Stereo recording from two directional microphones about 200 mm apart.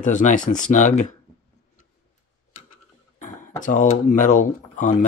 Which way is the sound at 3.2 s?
40° left (ahead or behind).